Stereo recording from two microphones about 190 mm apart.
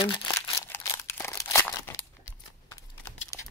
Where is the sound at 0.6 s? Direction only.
15° left (ahead or behind).